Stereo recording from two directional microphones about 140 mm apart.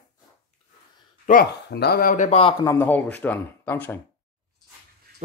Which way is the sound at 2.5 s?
20° left (ahead or behind).